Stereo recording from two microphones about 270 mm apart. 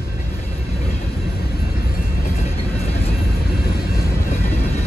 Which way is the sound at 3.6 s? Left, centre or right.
Left.